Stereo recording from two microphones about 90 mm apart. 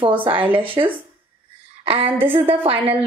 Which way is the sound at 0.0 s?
70° right (ahead or behind).